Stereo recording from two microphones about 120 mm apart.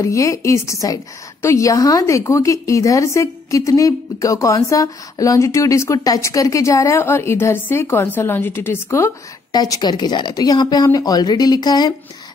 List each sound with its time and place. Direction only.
0.0 s a woman's voice: 25° left (ahead or behind)
9.5 s speech: 35° left (ahead or behind)